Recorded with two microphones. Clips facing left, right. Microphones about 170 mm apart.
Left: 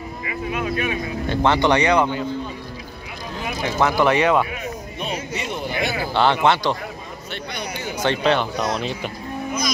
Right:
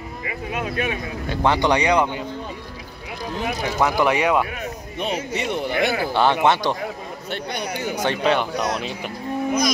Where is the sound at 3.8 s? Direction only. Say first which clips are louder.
Left 2 dB; 15° right (ahead or behind).